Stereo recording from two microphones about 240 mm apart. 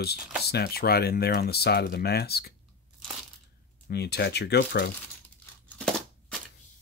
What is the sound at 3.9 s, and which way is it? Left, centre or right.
Speech, left.